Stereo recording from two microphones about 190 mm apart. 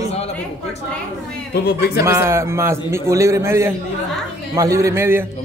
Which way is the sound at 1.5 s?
55° left (ahead or behind).